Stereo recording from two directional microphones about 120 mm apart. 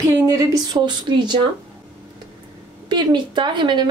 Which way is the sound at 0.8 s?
40° right (ahead or behind).